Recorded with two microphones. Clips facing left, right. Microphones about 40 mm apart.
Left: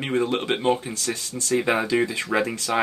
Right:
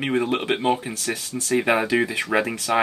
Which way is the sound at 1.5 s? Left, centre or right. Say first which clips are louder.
Right 2 dB; right.